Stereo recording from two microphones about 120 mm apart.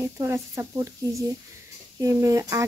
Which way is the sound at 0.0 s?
25° right (ahead or behind).